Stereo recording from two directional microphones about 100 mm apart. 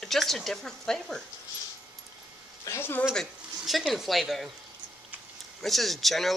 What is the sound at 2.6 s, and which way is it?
Speech, 25° left (ahead or behind).